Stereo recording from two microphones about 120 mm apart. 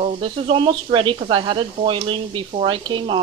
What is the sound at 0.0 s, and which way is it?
Speech, 50° right (ahead or behind).